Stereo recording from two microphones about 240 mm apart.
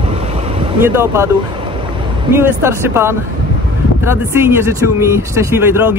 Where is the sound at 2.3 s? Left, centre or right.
Centre.